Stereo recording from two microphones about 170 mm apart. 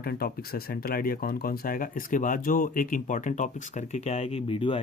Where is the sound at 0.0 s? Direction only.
65° left (ahead or behind).